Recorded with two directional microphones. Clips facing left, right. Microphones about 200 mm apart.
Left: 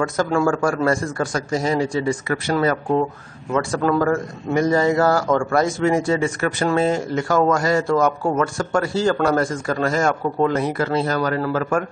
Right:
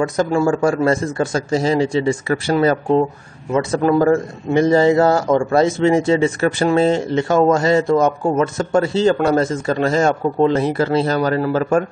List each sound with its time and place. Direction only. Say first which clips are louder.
0.0 s a man's voice: right 3 dB; 20° right (ahead or behind)
3.5 s a man's voice: right 4 dB; 20° right (ahead or behind)